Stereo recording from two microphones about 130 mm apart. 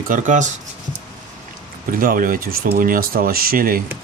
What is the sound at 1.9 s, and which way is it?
Speech, 90° right.